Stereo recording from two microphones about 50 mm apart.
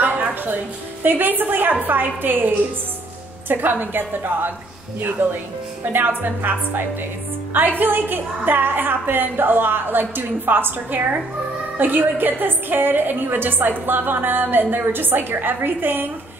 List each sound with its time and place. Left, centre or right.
1.0 s a woman's voice: right